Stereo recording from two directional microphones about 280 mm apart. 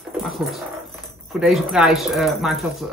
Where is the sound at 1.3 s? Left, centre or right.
Centre.